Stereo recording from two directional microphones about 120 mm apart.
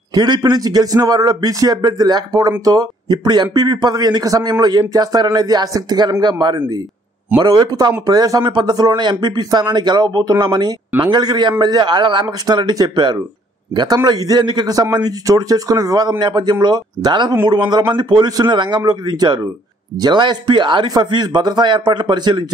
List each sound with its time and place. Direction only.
0.1 s speech: 35° right (ahead or behind)